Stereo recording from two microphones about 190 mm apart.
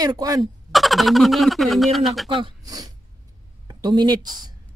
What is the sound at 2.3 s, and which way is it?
A woman's voice, 25° right (ahead or behind).